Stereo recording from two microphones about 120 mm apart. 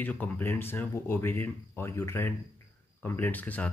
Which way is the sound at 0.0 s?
15° left (ahead or behind).